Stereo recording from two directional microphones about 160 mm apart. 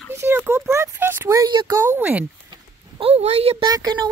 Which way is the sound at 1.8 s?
10° right (ahead or behind).